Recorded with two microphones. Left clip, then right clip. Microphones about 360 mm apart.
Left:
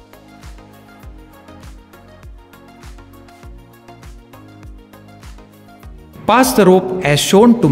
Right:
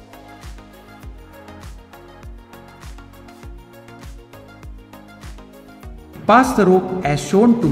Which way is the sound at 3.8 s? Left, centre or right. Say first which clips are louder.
Left 1 dB; centre.